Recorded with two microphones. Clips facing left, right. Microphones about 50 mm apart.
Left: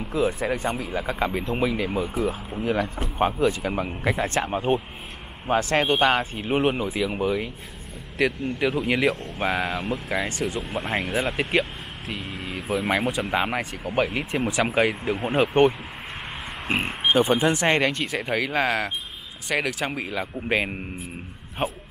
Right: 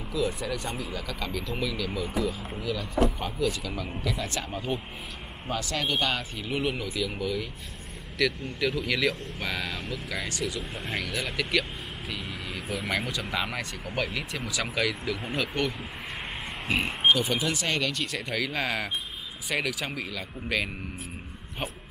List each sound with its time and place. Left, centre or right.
0.1 s speech: left
8.5 s speech: left
12.1 s vehicle: centre
13.0 s speech: left
13.6 s speech: centre
14.1 s speech: left; by 19.9 s centre
19.9 s speech: left